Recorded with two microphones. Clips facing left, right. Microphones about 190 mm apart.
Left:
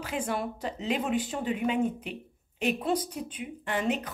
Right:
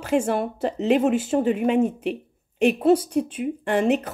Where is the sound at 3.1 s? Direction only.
55° right (ahead or behind).